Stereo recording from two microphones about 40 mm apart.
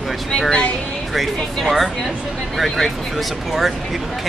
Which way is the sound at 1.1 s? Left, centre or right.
Centre.